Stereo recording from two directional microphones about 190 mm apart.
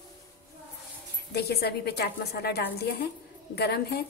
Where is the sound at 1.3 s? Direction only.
55° left (ahead or behind).